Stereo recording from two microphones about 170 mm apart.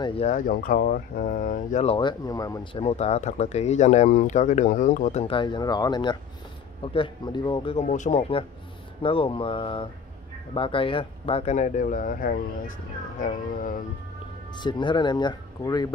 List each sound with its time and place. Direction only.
0.2 s speech: 50° left (ahead or behind)
2.0 s speech: 25° left (ahead or behind); by 5.2 s 50° left (ahead or behind)
5.2 s speech: 30° left (ahead or behind); by 12.7 s 55° left (ahead or behind)
14.6 s speech: 25° left (ahead or behind)